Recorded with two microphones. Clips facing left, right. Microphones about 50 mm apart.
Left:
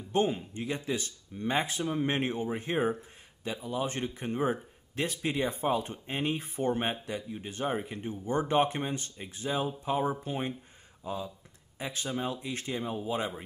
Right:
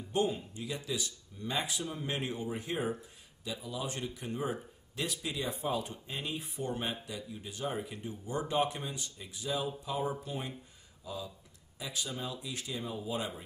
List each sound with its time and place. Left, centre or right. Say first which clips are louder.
0.1 s speech: left 4 dB; left